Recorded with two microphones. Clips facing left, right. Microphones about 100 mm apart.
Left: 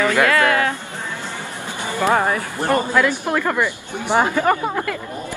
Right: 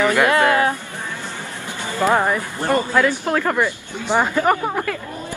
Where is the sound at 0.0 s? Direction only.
20° right (ahead or behind).